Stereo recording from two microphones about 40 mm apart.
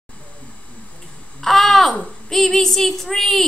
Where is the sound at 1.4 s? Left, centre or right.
Centre.